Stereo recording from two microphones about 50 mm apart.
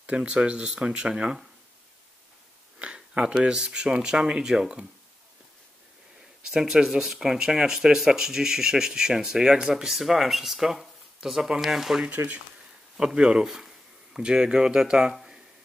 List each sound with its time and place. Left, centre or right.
0.0 s speech: right
2.8 s speech: right
6.4 s speech: centre
12.2 s speech: right
12.9 s speech: centre
15.1 s a sound: centre